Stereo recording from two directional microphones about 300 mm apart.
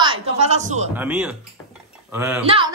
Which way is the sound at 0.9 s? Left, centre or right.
Centre.